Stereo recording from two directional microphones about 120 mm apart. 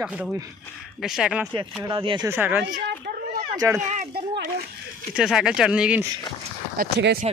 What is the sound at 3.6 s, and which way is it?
Speech, 25° right (ahead or behind).